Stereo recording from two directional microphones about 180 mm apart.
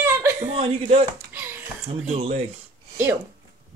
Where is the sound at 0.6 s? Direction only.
35° right (ahead or behind).